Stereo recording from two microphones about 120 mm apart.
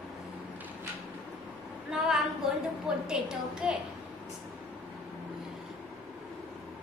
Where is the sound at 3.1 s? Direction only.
5° right (ahead or behind).